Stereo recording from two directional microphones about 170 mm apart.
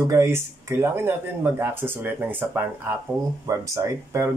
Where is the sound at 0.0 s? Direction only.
15° right (ahead or behind).